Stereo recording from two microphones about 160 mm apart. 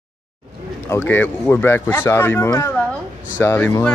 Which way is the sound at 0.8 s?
15° left (ahead or behind).